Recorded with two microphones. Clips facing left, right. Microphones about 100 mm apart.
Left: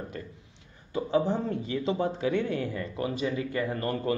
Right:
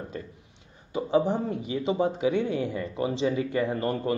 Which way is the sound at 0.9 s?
15° right (ahead or behind).